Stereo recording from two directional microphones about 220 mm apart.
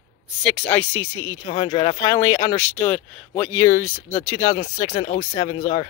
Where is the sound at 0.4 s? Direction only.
Centre (ahead or behind).